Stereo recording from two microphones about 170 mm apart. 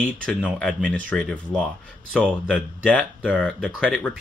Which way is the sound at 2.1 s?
5° right (ahead or behind).